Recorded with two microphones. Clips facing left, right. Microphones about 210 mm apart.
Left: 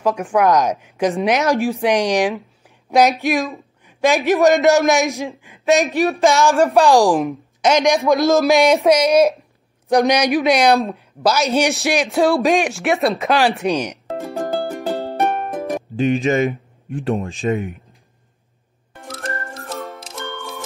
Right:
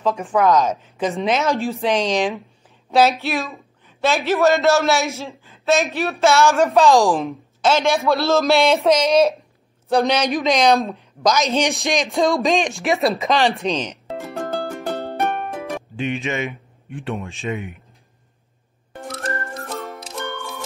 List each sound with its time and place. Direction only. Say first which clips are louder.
0.0 s a man's voice: left 2 dB; 10° left (ahead or behind)
12.7 s speech: left 1 dB; centre (ahead or behind)
13.6 s a man's voice: left 3 dB; 10° left (ahead or behind)
14.3 s music: left 3 dB; 15° left (ahead or behind)
15.3 s music: left 3 dB; centre (ahead or behind)
16.0 s speech: left 8 dB; 35° left (ahead or behind)
19.9 s music: right 1 dB; 15° right (ahead or behind)